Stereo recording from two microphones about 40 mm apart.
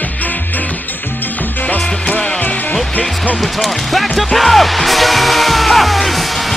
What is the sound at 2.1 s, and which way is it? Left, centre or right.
Music, left.